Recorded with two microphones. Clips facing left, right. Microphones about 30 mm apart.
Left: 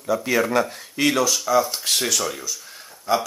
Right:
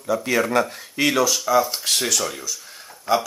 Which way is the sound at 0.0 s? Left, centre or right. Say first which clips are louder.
Even; centre.